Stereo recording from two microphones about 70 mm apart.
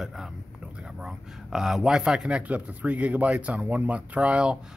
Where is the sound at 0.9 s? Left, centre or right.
Centre.